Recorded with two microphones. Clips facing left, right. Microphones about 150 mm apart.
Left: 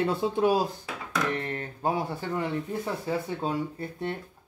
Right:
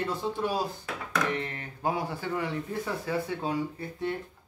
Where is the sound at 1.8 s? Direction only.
25° left (ahead or behind).